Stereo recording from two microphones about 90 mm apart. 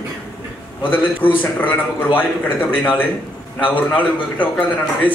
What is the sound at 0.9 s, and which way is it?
A man's voice, 20° left (ahead or behind).